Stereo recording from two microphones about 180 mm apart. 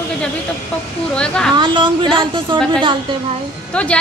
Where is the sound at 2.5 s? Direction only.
25° right (ahead or behind).